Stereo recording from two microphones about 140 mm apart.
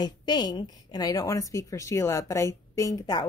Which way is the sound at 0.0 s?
30° left (ahead or behind).